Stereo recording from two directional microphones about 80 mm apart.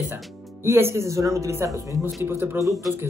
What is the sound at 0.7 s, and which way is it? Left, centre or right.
Speech, right.